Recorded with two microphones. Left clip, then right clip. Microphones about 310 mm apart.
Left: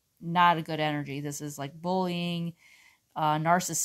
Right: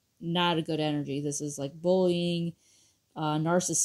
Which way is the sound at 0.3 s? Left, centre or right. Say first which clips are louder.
Left 5 dB; centre.